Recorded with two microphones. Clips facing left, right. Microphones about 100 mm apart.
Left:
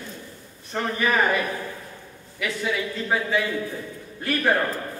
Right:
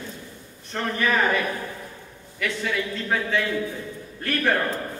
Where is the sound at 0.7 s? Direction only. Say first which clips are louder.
Even; 10° left (ahead or behind).